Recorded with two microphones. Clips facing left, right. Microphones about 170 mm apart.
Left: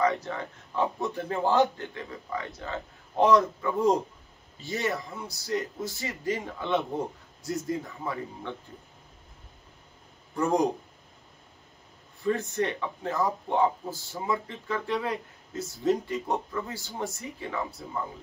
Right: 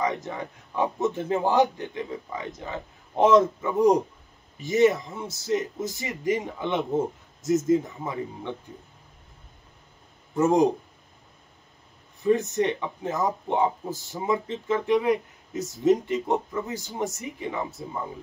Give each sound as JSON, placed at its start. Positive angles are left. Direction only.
{"t": 0.0, "sound": "speech", "side_deg": -20}
{"t": 10.3, "sound": "speech", "side_deg": -20}
{"t": 12.2, "sound": "speech", "side_deg": -20}